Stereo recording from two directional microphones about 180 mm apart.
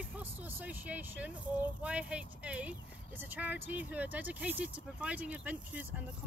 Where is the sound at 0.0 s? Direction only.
10° right (ahead or behind).